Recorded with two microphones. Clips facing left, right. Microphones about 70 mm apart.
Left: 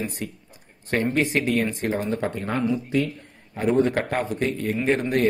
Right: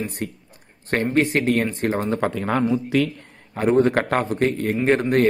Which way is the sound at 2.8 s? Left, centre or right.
Right.